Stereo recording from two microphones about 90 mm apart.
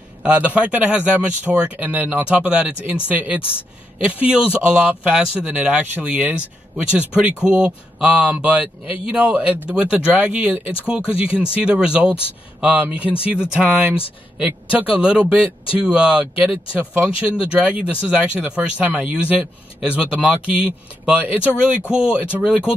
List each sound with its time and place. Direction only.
0.2 s speech: 15° right (ahead or behind)